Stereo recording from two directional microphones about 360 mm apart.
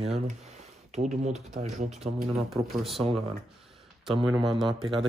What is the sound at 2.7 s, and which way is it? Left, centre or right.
Speech, centre.